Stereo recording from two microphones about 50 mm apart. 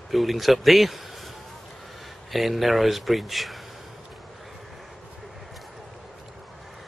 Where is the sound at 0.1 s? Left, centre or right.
Centre.